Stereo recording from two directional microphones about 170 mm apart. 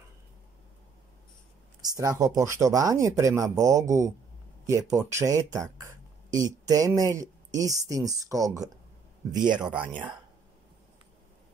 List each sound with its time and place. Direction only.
1.8 s speech: 20° right (ahead or behind)
9.6 s speech: 5° right (ahead or behind)